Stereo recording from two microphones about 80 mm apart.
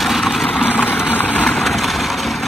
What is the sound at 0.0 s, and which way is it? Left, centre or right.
Vehicle, centre.